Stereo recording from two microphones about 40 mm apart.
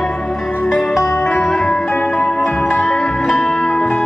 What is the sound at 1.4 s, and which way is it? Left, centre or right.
Organ, centre.